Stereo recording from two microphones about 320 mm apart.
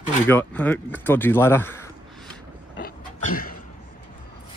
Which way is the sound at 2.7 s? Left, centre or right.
Left.